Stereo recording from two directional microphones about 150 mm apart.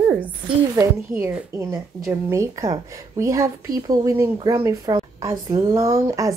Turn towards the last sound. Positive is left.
turn(degrees=-20)  # may be behind; listen again after turning